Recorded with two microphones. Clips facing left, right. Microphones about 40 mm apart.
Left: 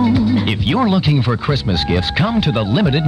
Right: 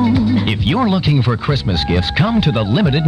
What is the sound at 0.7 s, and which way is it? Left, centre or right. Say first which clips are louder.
Speech: left 1 dB; centre.